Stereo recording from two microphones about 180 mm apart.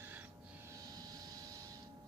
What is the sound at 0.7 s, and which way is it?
Vehicle, 20° right (ahead or behind).